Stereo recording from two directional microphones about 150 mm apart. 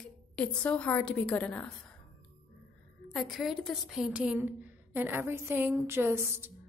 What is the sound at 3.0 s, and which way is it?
A woman's voice, centre (ahead or behind).